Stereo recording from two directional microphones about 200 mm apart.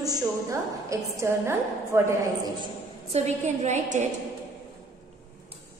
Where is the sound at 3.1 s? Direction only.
35° right (ahead or behind).